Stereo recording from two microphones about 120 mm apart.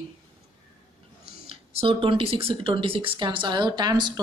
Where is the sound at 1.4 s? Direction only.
50° right (ahead or behind).